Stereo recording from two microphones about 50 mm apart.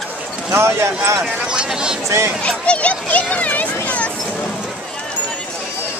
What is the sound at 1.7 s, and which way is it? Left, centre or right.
Speech, centre.